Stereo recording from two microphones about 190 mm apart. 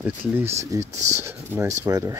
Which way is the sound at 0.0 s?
10° right (ahead or behind).